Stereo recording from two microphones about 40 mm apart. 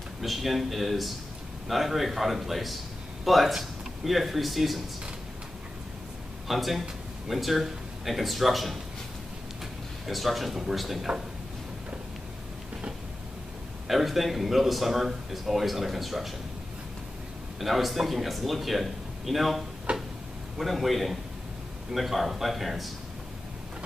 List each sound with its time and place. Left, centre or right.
0.2 s speech: centre
6.4 s speech: centre
10.0 s speech: centre
13.8 s speech: centre
17.6 s speech: centre
19.9 s a sound: right
20.5 s speech: centre